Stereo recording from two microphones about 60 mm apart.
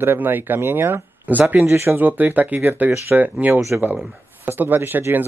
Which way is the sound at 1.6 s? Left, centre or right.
Right.